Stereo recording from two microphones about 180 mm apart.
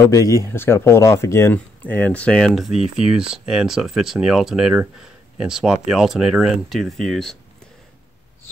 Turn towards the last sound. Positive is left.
turn(degrees=0)  # may be behind; listen again after turning